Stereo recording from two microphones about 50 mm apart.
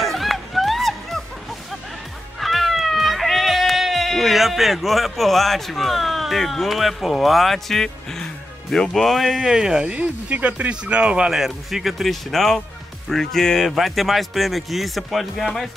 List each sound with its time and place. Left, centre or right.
0.0 s music: centre
2.4 s speech: centre
9.4 s speech: centre
9.8 s speech: right
11.3 s speech: centre